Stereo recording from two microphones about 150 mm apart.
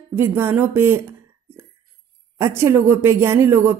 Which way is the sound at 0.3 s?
15° right (ahead or behind).